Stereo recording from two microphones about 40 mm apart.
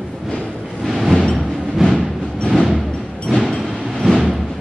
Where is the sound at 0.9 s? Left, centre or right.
Centre.